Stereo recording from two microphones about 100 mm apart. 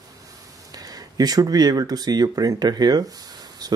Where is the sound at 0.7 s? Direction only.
40° right (ahead or behind).